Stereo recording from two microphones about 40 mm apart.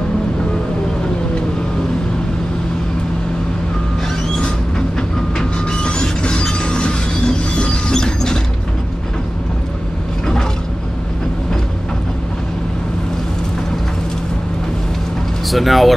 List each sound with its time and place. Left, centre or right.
5.4 s train: left
7.9 s mechanisms: centre
15.5 s speech: centre